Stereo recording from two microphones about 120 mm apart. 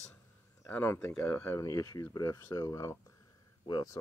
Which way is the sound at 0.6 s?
20° left (ahead or behind).